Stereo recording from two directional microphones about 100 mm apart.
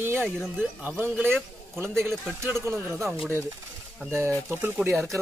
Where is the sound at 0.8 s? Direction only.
20° right (ahead or behind).